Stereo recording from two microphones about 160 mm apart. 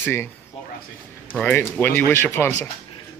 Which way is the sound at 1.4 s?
10° left (ahead or behind).